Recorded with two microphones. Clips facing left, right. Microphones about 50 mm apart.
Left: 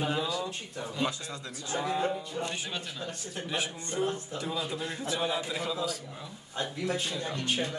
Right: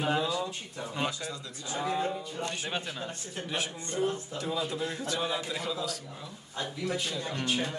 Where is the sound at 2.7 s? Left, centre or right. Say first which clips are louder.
Right 2 dB; right.